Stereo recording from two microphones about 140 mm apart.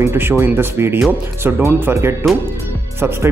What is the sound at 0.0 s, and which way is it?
Speech, 15° right (ahead or behind).